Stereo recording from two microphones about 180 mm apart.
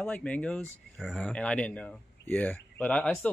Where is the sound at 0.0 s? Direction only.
5° left (ahead or behind).